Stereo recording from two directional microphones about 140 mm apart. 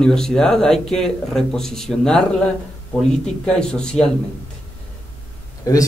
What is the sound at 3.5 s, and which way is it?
Speech, 5° left (ahead or behind).